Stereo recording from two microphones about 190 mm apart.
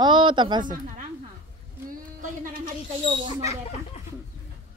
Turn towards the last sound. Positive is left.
turn(degrees=35)  # may be behind; listen again after turning